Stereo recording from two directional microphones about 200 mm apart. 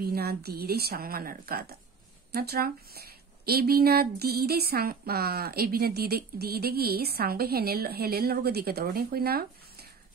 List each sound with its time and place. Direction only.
0.0 s speech: 50° right (ahead or behind)